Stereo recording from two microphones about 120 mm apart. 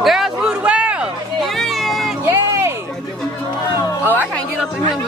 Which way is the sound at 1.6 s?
Centre (ahead or behind).